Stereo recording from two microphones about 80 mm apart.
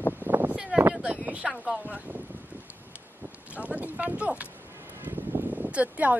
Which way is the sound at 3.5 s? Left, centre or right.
Centre.